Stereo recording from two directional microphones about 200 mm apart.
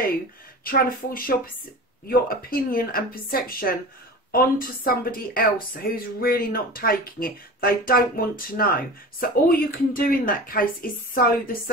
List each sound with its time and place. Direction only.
0.7 s speech: 45° left (ahead or behind)